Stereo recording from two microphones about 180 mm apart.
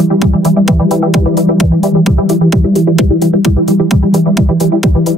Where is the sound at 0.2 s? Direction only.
Centre (ahead or behind).